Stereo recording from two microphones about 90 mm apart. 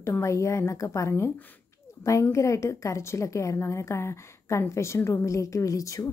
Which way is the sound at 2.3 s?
35° left (ahead or behind).